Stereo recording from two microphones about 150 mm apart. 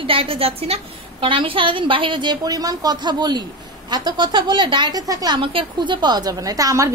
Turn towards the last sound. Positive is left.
turn(degrees=-20)  # may be behind; listen again after turning